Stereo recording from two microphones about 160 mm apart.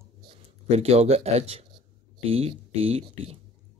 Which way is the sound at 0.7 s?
40° right (ahead or behind).